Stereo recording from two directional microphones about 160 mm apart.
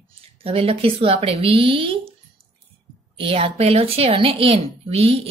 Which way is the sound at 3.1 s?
35° right (ahead or behind).